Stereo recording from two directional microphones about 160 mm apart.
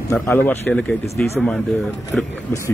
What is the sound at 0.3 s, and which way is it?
Speech, 10° left (ahead or behind).